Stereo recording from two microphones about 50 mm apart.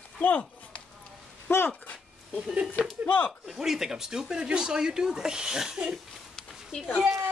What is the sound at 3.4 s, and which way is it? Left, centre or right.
Speech, centre.